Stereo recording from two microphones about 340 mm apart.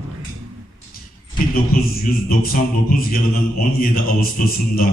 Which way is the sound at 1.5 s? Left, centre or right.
Left.